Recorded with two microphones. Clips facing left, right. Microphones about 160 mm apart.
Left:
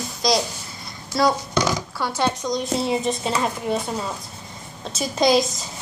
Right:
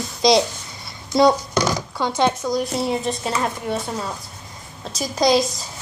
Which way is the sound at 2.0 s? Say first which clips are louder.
Right 5 dB; 15° right (ahead or behind).